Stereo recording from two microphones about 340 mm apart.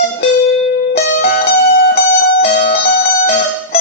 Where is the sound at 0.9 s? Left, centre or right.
Left.